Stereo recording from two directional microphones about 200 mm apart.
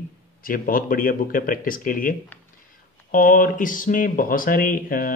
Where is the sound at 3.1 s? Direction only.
45° left (ahead or behind).